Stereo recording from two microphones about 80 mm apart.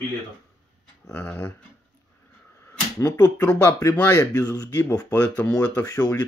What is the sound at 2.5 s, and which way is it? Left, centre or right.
Slap, left.